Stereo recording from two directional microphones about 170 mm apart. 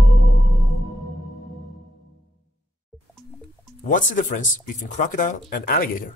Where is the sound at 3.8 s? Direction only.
50° left (ahead or behind).